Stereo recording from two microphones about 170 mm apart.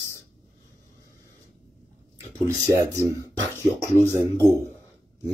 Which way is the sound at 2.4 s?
15° right (ahead or behind).